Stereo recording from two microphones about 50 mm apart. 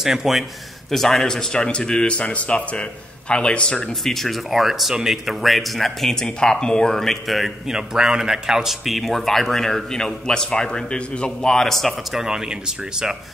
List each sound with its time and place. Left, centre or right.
0.0 s speech: centre
0.8 s speech: centre
4.0 s speech: centre
7.2 s speech: centre
11.4 s speech: centre
12.2 s speech: centre